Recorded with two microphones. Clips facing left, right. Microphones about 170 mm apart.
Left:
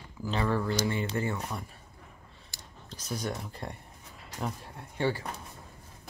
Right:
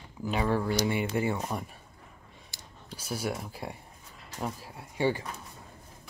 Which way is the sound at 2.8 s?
10° right (ahead or behind).